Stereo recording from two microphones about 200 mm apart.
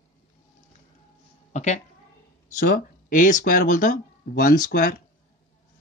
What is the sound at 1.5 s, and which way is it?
A woman's voice, 35° left (ahead or behind).